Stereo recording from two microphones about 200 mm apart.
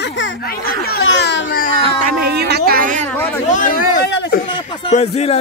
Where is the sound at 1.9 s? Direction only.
55° right (ahead or behind).